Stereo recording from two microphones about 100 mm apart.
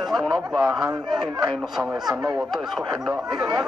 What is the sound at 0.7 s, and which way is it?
Speech, 40° right (ahead or behind).